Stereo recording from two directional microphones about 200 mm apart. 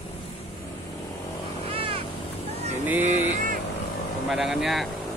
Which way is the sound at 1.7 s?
25° right (ahead or behind).